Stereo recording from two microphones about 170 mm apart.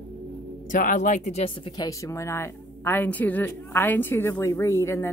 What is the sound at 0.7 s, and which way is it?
Speech, 50° left (ahead or behind).